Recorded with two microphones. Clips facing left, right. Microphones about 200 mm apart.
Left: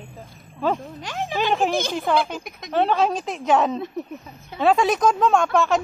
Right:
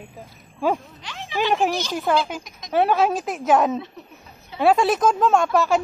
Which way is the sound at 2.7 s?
10° right (ahead or behind).